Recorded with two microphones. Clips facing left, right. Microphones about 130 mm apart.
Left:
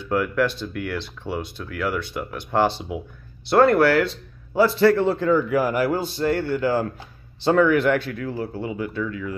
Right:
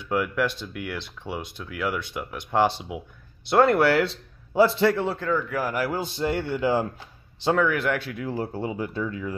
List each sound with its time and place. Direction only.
0.0 s speech: 15° right (ahead or behind)
5.0 s speech: centre (ahead or behind)
5.9 s speech: 20° right (ahead or behind)
7.5 s speech: 5° right (ahead or behind)
8.3 s speech: 30° right (ahead or behind)